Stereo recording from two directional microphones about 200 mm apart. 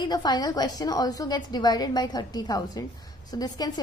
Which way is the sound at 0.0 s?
20° left (ahead or behind).